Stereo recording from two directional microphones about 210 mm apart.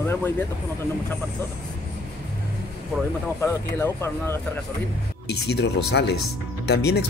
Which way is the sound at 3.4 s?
10° left (ahead or behind).